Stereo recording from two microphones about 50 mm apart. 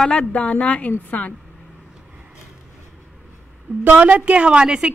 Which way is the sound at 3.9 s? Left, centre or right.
Right.